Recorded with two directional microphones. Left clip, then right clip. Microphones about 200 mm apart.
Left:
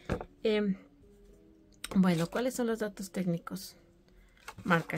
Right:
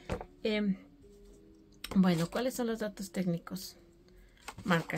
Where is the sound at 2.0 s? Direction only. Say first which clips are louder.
Left 1 dB; 20° left (ahead or behind).